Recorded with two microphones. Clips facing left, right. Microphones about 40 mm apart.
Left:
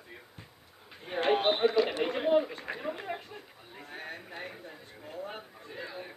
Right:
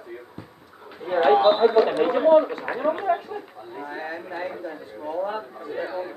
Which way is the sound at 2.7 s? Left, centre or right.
Right.